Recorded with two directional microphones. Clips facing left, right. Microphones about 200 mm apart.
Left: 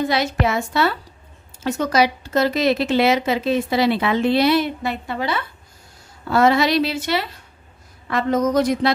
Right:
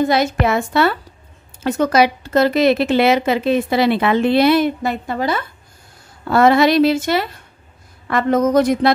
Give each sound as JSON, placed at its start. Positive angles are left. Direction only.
{"t": 0.0, "sound": "speech", "side_deg": -50}
{"t": 6.2, "sound": "a woman's voice", "side_deg": -55}